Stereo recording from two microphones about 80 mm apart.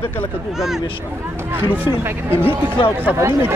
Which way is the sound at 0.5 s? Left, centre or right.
Centre.